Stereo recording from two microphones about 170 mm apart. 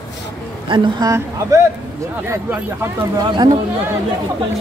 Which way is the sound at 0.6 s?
30° right (ahead or behind).